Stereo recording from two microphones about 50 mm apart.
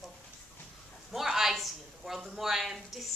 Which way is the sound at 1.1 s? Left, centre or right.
Centre.